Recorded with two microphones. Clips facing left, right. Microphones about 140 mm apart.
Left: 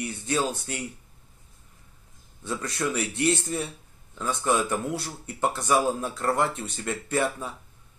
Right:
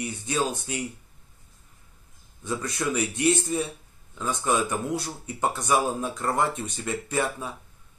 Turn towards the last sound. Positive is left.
turn(degrees=-15)  # may be behind; listen again after turning